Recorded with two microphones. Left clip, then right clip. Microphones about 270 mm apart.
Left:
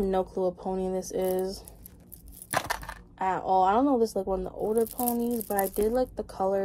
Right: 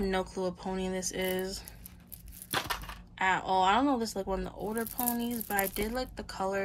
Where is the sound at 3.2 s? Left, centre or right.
Centre.